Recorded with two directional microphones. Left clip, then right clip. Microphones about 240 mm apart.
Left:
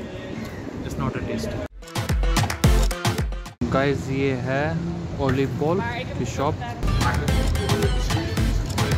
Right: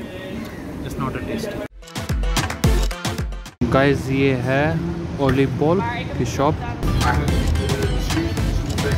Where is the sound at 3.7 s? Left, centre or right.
Centre.